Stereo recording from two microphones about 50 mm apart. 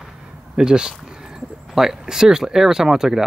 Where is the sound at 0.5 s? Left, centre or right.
Centre.